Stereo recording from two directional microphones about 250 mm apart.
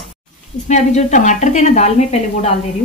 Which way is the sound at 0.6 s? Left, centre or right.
Left.